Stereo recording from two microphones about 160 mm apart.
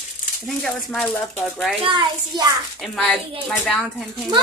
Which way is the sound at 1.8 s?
30° right (ahead or behind).